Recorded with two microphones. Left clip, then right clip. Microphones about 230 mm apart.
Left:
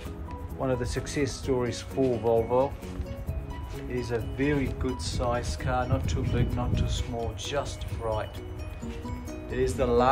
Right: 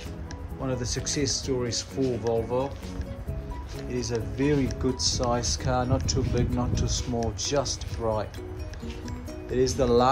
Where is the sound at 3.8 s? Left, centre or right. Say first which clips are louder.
Right 1 dB; centre.